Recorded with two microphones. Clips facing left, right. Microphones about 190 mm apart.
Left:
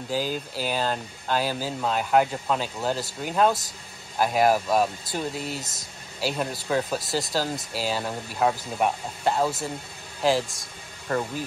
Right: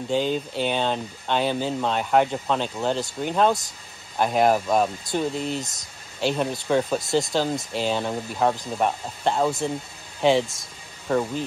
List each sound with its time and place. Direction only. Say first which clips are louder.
0.1 s speech: right 4 dB; 5° left (ahead or behind)